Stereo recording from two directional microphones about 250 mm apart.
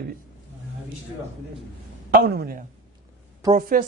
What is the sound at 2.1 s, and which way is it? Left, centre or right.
Speech, right.